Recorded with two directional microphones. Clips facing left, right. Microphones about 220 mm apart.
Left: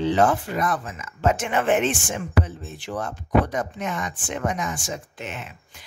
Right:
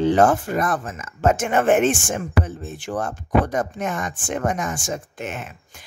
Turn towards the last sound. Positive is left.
turn(degrees=-50)  # may be behind; listen again after turning